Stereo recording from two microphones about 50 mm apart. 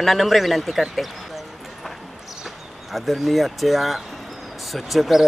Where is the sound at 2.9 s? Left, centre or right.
Centre.